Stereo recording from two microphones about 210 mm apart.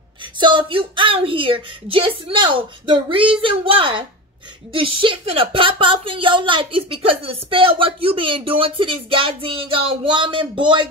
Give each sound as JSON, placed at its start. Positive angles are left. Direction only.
{"t": 0.4, "sound": "speech", "side_deg": -25}